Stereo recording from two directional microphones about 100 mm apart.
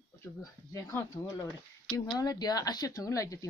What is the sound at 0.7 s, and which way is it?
Speech, 30° left (ahead or behind).